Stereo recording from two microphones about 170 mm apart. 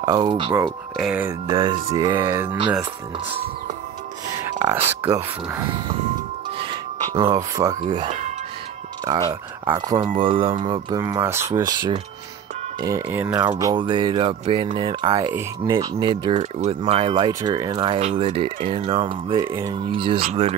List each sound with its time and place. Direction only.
0.0 s speech: 25° right (ahead or behind)
0.7 s speech: centre (ahead or behind)
1.5 s speech: 25° right (ahead or behind); by 3.3 s 10° right (ahead or behind)
7.2 s speech: 15° right (ahead or behind)
16.3 s speech: 40° right (ahead or behind)
17.3 s speech: 20° right (ahead or behind); by 20.5 s 35° right (ahead or behind)